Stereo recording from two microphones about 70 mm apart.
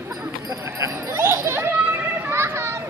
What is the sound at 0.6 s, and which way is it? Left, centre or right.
Chatter, right.